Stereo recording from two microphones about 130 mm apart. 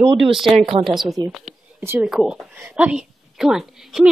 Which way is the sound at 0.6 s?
50° right (ahead or behind).